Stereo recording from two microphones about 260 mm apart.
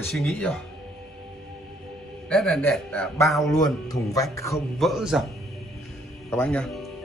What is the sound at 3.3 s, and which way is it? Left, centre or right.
Speech, centre.